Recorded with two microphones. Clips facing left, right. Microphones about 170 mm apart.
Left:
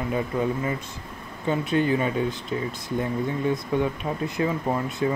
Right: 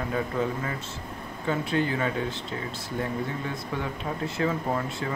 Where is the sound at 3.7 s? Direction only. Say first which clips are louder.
Left 6 dB; 20° left (ahead or behind).